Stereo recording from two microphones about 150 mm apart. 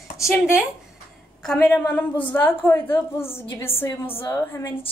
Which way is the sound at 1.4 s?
5° left (ahead or behind).